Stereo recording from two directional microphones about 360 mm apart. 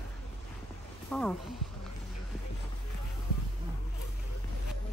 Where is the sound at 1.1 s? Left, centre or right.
Centre.